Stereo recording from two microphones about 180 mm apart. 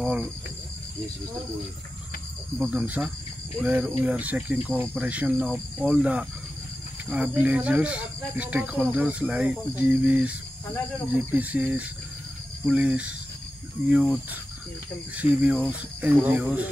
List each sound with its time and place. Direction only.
0.0 s cricket: 5° right (ahead or behind)
2.6 s speech: 5° right (ahead or behind)
11.3 s speech: 10° right (ahead or behind)
15.2 s speech: 35° left (ahead or behind)
15.7 s speech: 10° right (ahead or behind)